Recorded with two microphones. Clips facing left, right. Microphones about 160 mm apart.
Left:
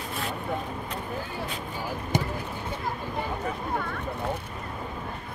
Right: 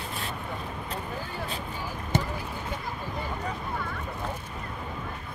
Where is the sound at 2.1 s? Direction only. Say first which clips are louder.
Even; 10° left (ahead or behind).